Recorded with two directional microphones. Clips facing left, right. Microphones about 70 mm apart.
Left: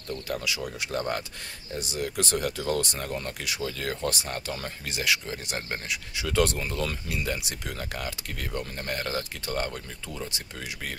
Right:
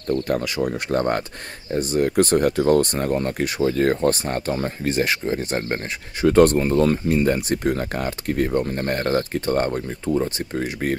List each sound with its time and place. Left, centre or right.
0.1 s speech: right